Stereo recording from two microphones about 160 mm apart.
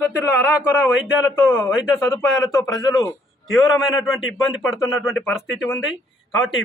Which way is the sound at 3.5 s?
Centre (ahead or behind).